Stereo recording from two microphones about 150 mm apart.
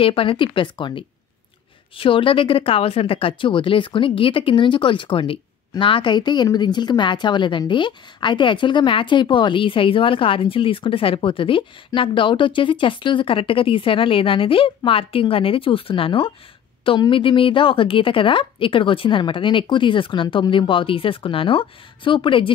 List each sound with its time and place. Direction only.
0.0 s a woman's voice: 35° left (ahead or behind)